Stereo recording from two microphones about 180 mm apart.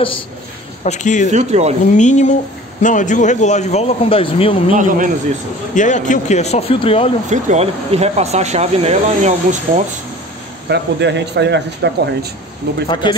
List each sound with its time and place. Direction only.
0.8 s a man's voice: 40° left (ahead or behind)
1.3 s speech: 40° right (ahead or behind)
2.0 s a man's voice: 40° left (ahead or behind)
4.7 s speech: 45° right (ahead or behind)
5.8 s a man's voice: 45° left (ahead or behind)
7.2 s speech: 40° right (ahead or behind)
10.7 s speech: 75° right (ahead or behind)
12.8 s speech: 25° left (ahead or behind)